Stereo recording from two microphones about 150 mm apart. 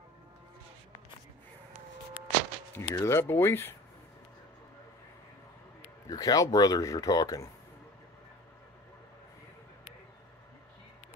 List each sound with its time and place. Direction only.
2.7 s speech: 15° left (ahead or behind)
6.0 s speech: 25° left (ahead or behind)